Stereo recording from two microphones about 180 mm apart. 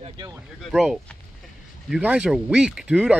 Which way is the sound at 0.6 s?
Centre (ahead or behind).